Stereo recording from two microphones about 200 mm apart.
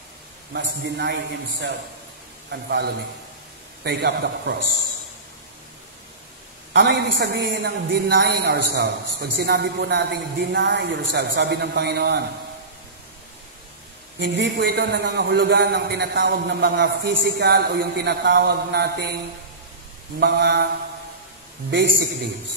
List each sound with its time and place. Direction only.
0.5 s a man's voice: 60° right (ahead or behind)
6.7 s a man's voice: 60° right (ahead or behind)
14.2 s a man's voice: 60° right (ahead or behind)
20.2 s mantra: 55° right (ahead or behind)